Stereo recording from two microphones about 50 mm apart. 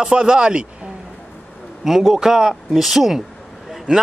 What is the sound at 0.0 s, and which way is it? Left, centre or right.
Speech, centre.